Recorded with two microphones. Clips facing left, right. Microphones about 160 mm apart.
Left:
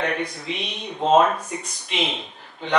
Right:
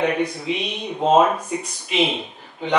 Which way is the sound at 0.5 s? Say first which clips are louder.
Right 5 dB; 5° right (ahead or behind).